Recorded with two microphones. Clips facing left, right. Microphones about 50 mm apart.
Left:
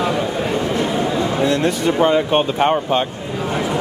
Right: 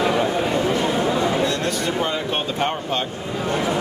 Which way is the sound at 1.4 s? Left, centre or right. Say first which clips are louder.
Left 5 dB; centre.